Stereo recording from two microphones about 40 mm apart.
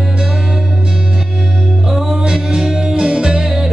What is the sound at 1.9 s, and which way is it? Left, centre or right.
Music, centre.